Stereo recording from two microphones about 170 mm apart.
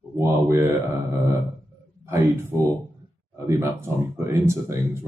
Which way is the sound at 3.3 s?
15° right (ahead or behind).